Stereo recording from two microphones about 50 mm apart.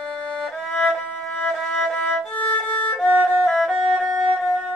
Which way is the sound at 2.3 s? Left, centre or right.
Left.